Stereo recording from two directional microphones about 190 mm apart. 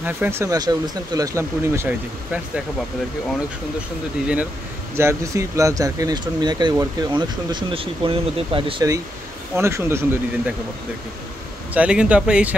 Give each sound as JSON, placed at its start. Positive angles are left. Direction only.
{"t": 0.0, "sound": "speech", "side_deg": -10}
{"t": 4.9, "sound": "speech", "side_deg": -15}
{"t": 11.7, "sound": "speech", "side_deg": -5}